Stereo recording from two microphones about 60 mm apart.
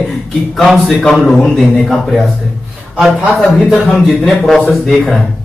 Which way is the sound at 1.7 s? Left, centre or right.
Centre.